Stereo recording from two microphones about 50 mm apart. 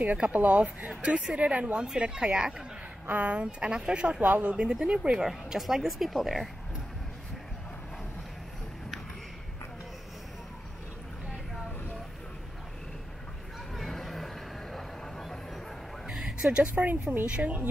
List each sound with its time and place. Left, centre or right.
0.0 s speech: right
3.1 s speech: right
5.2 s speech: centre
13.7 s vehicle: centre
16.1 s a woman's voice: centre; by 17.6 s right